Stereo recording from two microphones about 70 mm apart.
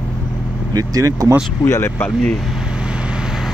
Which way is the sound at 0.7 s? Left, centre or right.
Right.